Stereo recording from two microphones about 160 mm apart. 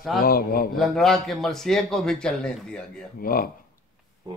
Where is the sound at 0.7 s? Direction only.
Centre (ahead or behind).